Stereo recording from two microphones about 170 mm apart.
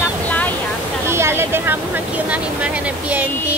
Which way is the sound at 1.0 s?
15° right (ahead or behind).